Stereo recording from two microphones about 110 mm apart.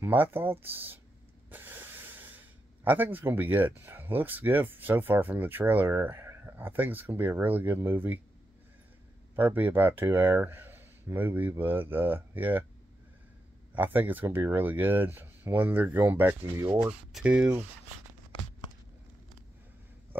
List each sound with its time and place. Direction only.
0.0 s speech: 20° right (ahead or behind)
9.3 s speech: 20° right (ahead or behind)
13.7 s speech: 15° right (ahead or behind)
16.8 s speech: 5° right (ahead or behind)